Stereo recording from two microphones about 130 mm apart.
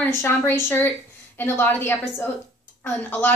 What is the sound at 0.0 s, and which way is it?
Speech, 20° left (ahead or behind).